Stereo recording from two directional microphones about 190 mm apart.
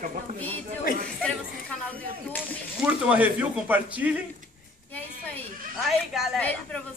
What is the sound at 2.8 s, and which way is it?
Speech, 5° right (ahead or behind).